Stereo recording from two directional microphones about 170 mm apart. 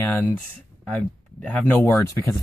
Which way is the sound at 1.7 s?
10° left (ahead or behind).